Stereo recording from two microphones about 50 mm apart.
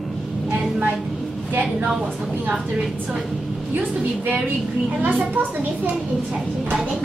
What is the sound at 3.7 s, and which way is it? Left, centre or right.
A woman's voice, right.